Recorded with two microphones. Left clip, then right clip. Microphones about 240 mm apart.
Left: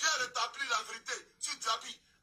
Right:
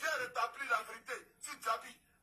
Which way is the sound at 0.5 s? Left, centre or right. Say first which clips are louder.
Left 2 dB; left.